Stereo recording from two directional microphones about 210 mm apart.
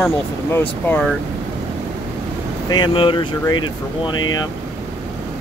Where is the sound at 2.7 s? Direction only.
25° left (ahead or behind).